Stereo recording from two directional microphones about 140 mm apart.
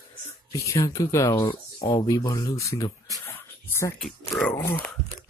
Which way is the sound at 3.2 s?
15° left (ahead or behind).